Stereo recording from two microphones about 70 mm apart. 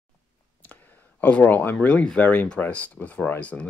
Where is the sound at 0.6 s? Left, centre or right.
Left.